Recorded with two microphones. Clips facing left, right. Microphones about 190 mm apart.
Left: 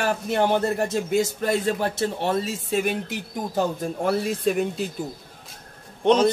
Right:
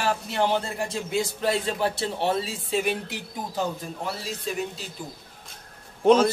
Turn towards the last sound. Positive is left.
turn(degrees=-5)  # may be behind; listen again after turning